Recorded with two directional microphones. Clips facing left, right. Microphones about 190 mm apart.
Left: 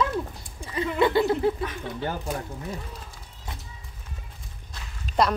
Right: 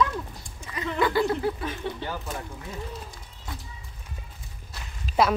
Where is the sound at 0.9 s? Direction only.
25° left (ahead or behind).